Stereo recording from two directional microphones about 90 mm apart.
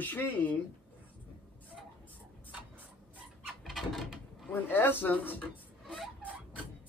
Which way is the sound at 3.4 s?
Centre (ahead or behind).